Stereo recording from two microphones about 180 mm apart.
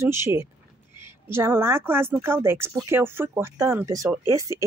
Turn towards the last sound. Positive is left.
turn(degrees=-15)  # may be behind; listen again after turning